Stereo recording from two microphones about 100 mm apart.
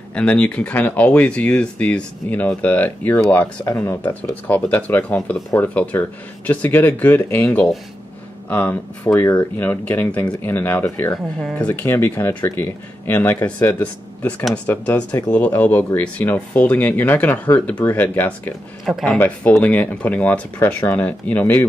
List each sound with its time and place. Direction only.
0.1 s speech: 10° left (ahead or behind)